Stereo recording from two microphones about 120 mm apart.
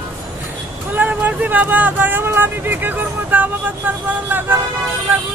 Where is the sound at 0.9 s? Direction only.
15° right (ahead or behind).